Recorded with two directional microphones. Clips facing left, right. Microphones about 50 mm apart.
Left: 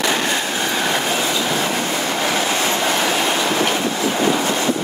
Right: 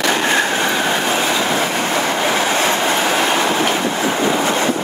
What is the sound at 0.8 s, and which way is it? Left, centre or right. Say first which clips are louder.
Train: right 2 dB; right.